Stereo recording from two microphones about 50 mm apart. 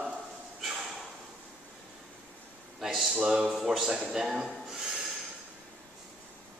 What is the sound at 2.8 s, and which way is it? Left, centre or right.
A man's voice, centre.